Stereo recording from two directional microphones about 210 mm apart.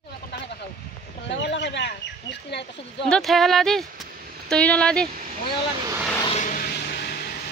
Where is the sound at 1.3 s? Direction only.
60° left (ahead or behind).